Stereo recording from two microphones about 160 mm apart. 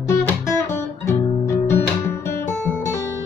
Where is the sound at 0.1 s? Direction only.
20° left (ahead or behind).